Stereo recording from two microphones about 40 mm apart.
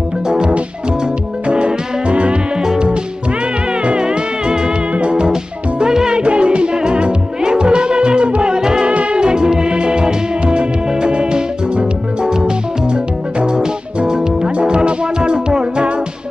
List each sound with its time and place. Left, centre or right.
0.3 s music: right
2.6 s music: centre